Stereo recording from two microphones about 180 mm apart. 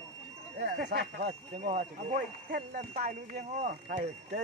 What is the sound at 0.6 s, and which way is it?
Speech, 70° right (ahead or behind).